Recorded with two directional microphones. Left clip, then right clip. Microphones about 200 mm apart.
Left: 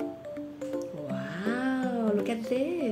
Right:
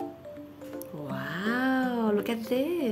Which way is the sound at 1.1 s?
15° right (ahead or behind).